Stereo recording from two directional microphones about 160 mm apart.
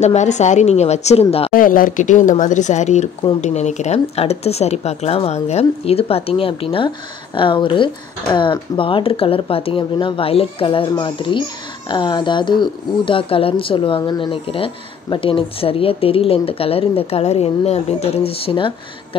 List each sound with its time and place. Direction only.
0.0 s speech: 45° left (ahead or behind)
1.5 s speech: 60° left (ahead or behind); by 18.7 s 35° left (ahead or behind)